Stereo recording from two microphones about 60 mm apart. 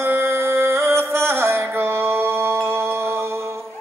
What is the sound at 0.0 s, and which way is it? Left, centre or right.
Music, right.